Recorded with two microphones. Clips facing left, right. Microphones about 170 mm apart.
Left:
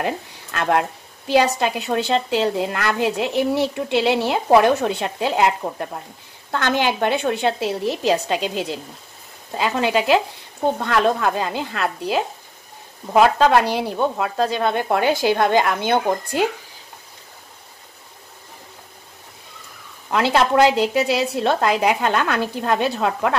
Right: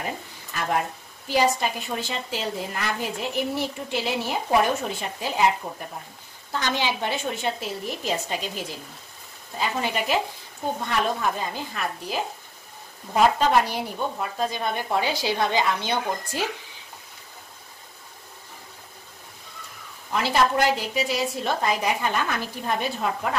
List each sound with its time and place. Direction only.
0.0 s a woman's voice: 75° left (ahead or behind)
6.5 s a woman's voice: 60° left (ahead or behind)
20.3 s a woman's voice: 75° left (ahead or behind)